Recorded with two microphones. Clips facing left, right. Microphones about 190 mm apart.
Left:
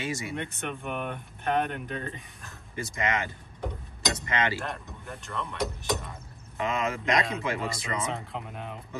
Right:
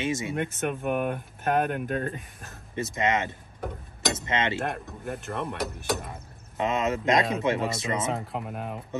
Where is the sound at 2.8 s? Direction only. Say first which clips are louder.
Right 4 dB; 25° right (ahead or behind).